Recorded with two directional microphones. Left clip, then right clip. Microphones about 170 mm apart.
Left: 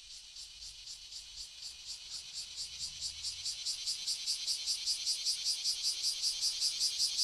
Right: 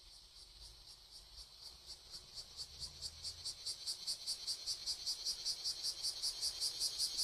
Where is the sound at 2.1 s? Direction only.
70° right (ahead or behind).